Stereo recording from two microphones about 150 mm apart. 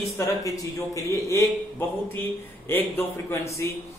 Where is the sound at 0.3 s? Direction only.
20° left (ahead or behind).